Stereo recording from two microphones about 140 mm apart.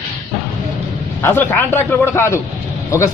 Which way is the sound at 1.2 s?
15° left (ahead or behind).